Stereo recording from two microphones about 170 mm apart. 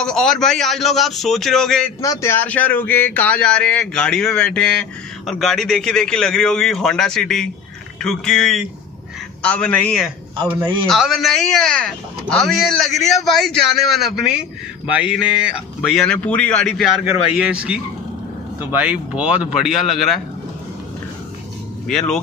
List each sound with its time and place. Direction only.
0.0 s speech: 5° left (ahead or behind)
2.0 s speech: 15° left (ahead or behind); by 20.2 s centre (ahead or behind)
21.8 s speech: 5° left (ahead or behind)